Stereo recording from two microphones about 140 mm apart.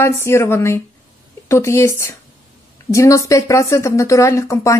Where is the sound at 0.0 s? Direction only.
20° left (ahead or behind).